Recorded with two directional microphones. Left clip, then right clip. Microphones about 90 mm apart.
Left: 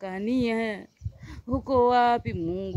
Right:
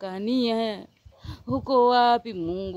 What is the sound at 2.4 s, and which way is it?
Mantra, 40° right (ahead or behind).